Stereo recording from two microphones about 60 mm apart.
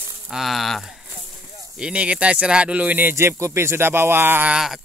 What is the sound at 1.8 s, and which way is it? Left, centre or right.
Speech, centre.